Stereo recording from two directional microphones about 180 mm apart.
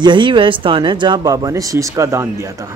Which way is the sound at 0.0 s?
25° right (ahead or behind).